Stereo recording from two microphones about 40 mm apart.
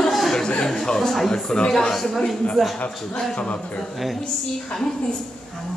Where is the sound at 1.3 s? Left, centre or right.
Left.